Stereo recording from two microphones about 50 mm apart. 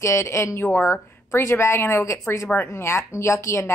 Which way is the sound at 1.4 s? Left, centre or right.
Left.